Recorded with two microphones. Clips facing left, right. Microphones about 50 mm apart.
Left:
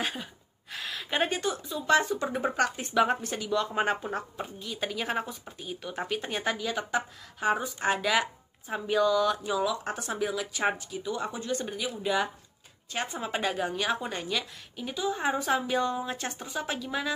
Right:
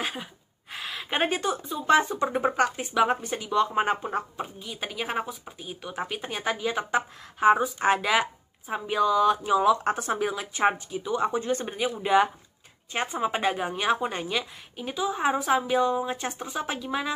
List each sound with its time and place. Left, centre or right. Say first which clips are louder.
0.0 s a woman's voice: right 1 dB; centre
0.7 s a sound: right 1 dB; centre
1.3 s a woman's voice: right 3 dB; right
2.5 s a woman's voice: right 2 dB; centre
6.6 s a woman's voice: right 4 dB; right
12.9 s a woman's voice: right 5 dB; right